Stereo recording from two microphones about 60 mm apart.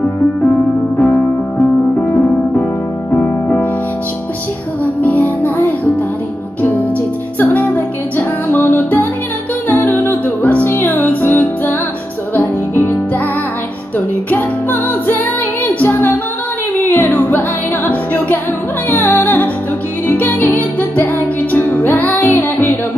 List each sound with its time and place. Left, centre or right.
0.9 s music: left
5.0 s music: left
7.3 s music: left